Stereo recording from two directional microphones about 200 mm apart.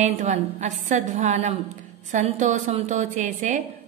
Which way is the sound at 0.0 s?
35° right (ahead or behind).